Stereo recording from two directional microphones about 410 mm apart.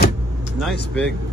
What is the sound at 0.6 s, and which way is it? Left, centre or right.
Speech, centre.